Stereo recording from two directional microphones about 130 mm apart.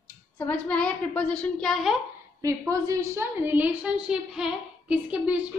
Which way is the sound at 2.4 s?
25° right (ahead or behind).